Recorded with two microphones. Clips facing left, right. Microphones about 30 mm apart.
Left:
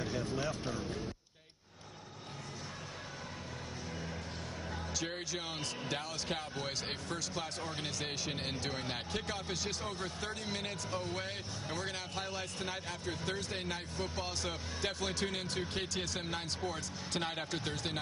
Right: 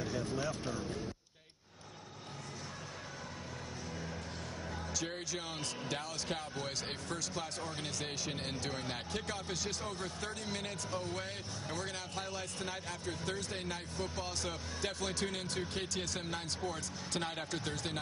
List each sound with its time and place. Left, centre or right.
0.0 s vehicle: centre
4.9 s speech: centre